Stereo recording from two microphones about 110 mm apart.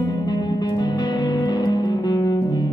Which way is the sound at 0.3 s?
40° left (ahead or behind).